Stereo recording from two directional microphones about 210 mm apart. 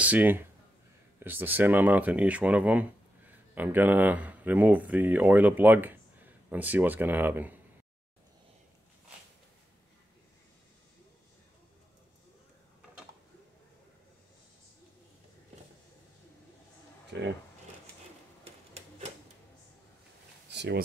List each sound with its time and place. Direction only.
0.0 s speech: 10° right (ahead or behind)
17.1 s speech: 55° right (ahead or behind)
18.4 s printer: 30° right (ahead or behind)
20.4 s a sound: 55° right (ahead or behind)